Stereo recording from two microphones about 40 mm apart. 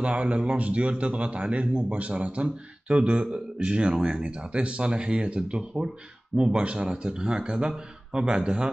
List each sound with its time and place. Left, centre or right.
0.0 s a man's voice: right